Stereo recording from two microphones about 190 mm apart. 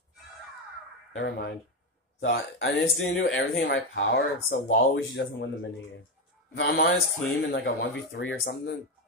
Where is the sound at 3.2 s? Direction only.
75° left (ahead or behind); by 6.9 s 55° left (ahead or behind).